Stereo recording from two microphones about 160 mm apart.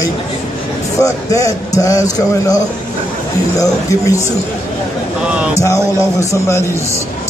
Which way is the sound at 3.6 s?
20° left (ahead or behind).